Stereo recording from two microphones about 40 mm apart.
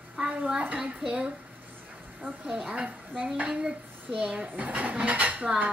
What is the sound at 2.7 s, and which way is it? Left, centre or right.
Speech, right.